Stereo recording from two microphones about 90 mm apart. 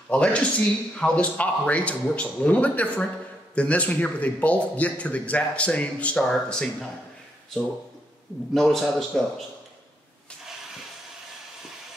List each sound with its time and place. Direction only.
0.1 s speech: 15° left (ahead or behind)
8.5 s a man's voice: 5° left (ahead or behind)